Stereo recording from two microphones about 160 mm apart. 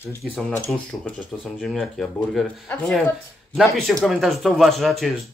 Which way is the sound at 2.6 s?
10° left (ahead or behind).